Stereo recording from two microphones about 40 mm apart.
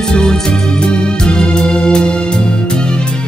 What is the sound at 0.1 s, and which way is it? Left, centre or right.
Music, centre.